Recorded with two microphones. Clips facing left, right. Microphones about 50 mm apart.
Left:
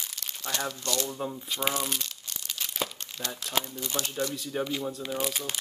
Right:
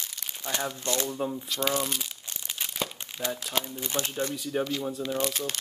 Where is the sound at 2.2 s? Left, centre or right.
Centre.